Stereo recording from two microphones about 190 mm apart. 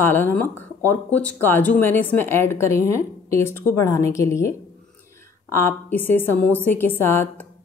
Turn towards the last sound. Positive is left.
turn(degrees=10)  # may be behind; listen again after turning